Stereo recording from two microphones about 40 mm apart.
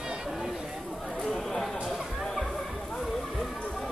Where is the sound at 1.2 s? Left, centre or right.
Centre.